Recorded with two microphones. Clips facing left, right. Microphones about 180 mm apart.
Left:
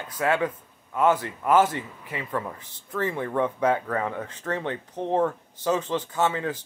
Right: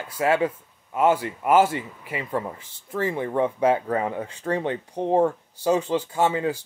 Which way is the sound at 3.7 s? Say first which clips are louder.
Right 3 dB; 25° right (ahead or behind).